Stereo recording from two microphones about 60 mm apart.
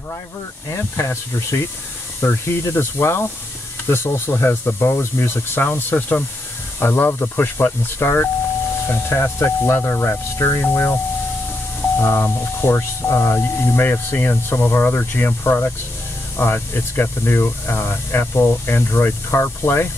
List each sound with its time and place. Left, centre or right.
0.7 s speech: left
8.8 s speech: left
12.0 s speech: left
13.4 s speech: left